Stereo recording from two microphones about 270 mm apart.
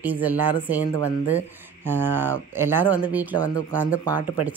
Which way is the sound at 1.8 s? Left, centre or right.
Centre.